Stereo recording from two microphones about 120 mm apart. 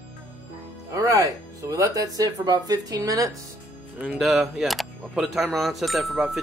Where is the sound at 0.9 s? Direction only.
25° right (ahead or behind).